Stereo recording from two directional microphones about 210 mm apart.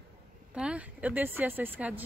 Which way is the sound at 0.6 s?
5° right (ahead or behind).